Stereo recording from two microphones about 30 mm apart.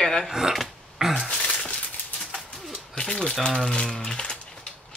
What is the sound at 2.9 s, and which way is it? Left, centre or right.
Typewriter, left.